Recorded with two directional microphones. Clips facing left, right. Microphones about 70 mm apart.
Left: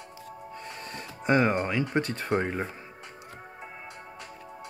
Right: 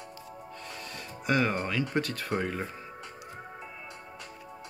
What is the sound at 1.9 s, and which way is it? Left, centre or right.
Speech, left.